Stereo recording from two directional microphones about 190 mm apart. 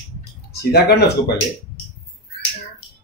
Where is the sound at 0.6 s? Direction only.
60° left (ahead or behind).